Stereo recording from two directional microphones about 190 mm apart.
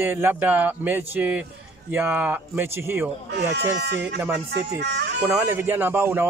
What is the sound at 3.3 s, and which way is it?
Speech, 65° right (ahead or behind).